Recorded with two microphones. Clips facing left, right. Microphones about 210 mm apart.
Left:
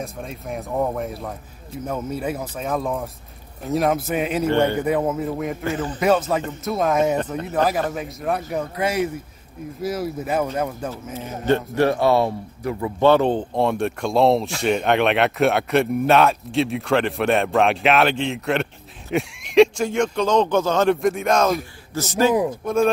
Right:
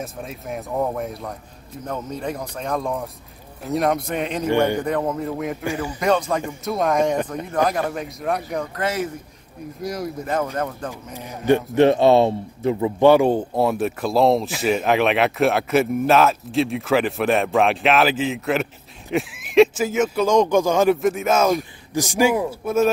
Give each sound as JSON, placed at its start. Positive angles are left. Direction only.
{"t": 0.0, "sound": "speech", "side_deg": 0}
{"t": 4.5, "sound": "speech", "side_deg": -10}
{"t": 4.8, "sound": "speech", "side_deg": 5}
{"t": 5.7, "sound": "speech", "side_deg": -10}
{"t": 5.9, "sound": "speech", "side_deg": 5}
{"t": 11.1, "sound": "speech", "side_deg": -15}
{"t": 13.1, "sound": "speech", "side_deg": -10}
{"t": 21.9, "sound": "speech", "side_deg": -10}